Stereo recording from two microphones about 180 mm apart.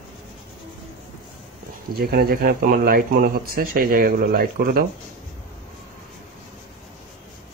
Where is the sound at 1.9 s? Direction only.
55° right (ahead or behind).